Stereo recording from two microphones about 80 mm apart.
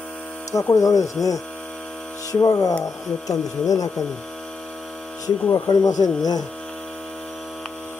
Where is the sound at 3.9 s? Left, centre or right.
Centre.